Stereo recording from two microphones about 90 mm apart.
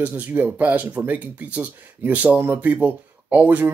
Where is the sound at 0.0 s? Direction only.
20° right (ahead or behind).